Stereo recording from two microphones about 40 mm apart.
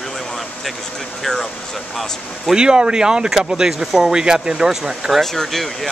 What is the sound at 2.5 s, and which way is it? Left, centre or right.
Speech, right.